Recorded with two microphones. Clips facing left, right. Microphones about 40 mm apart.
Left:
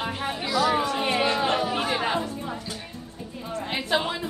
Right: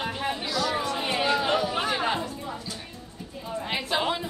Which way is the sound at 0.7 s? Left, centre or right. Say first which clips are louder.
Left 3 dB; centre.